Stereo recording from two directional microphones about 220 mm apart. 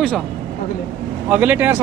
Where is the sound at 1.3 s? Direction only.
5° right (ahead or behind).